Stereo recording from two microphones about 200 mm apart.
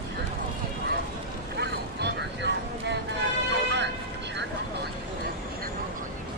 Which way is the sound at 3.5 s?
60° right (ahead or behind).